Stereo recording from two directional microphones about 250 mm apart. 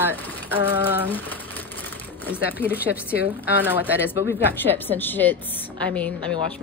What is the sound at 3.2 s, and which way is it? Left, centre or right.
Speech, centre.